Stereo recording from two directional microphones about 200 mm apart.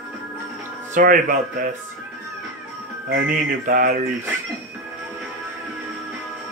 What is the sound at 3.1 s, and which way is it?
Music, 45° right (ahead or behind).